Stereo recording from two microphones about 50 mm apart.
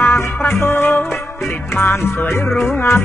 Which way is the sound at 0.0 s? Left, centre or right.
Left.